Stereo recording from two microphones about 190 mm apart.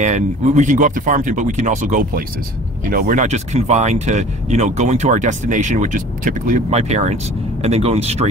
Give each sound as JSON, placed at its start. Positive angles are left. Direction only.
{"t": 0.0, "sound": "speech", "side_deg": -40}